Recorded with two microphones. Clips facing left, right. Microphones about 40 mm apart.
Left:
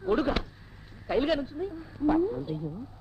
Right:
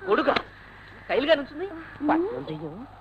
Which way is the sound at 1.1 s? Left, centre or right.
Right.